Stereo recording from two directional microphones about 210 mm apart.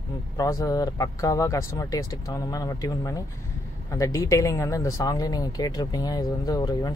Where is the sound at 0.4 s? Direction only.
15° left (ahead or behind).